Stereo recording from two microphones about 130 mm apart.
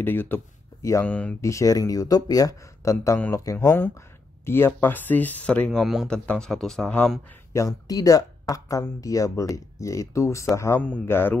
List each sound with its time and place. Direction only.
0.0 s speech: 15° left (ahead or behind)
1.4 s speech: 25° left (ahead or behind); by 7.2 s 10° left (ahead or behind)
7.5 s speech: 25° left (ahead or behind)